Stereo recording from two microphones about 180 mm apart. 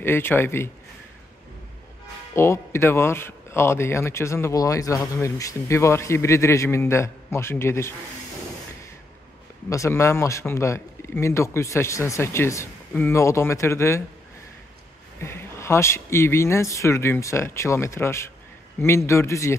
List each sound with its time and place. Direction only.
0.0 s speech: 10° left (ahead or behind)
2.3 s speech: 15° left (ahead or behind)
9.7 s speech: 15° left (ahead or behind)
15.1 s speech: 15° left (ahead or behind)